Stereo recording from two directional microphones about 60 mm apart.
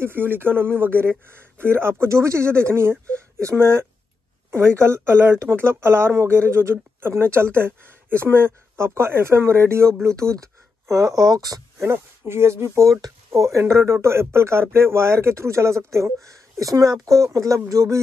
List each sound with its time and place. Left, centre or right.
0.0 s speech: right
10.0 s speech: right
11.8 s speech: right